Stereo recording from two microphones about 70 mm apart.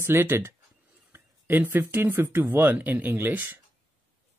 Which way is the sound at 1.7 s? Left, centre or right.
Right.